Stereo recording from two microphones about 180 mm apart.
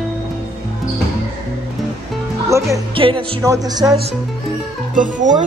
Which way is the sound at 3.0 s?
30° right (ahead or behind).